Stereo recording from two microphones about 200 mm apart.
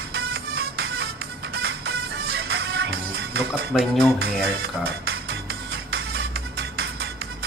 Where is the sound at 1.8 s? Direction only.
55° right (ahead or behind).